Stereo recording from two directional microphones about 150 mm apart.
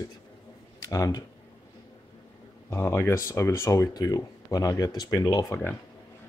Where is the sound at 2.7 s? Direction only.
15° left (ahead or behind).